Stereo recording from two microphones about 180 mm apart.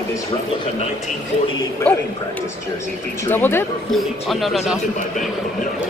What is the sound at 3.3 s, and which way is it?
Speech, 10° left (ahead or behind).